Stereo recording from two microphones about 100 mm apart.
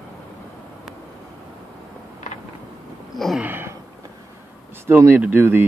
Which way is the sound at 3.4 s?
20° right (ahead or behind).